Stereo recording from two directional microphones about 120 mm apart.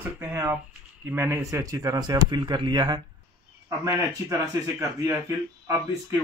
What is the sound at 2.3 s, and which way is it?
Speech, 40° right (ahead or behind).